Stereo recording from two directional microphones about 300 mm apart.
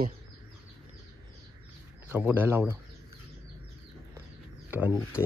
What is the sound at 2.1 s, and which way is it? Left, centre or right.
Speech, centre.